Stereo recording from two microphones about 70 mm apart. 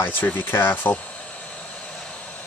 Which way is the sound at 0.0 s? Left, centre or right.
Left.